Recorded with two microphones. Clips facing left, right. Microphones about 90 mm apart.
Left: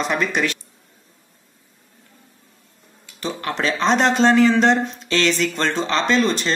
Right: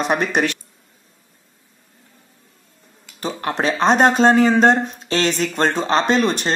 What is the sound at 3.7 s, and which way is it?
Speech, 50° right (ahead or behind).